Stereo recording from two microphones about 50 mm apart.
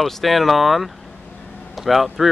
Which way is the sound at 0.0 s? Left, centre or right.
Centre.